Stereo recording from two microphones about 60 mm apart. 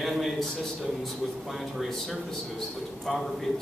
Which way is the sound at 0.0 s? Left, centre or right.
Centre.